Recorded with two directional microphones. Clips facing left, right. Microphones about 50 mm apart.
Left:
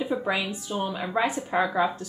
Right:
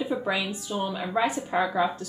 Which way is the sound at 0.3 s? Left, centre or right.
Left.